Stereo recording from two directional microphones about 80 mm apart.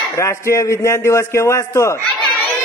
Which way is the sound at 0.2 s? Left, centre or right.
Left.